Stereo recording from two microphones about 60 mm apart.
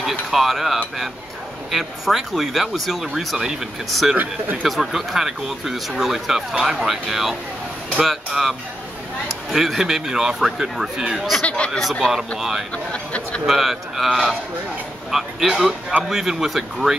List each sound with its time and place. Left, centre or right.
0.3 s speech: centre
11.4 s a sound: centre
11.8 s speech: centre
12.4 s speech: centre
12.7 s a sound: centre
13.5 s speech: centre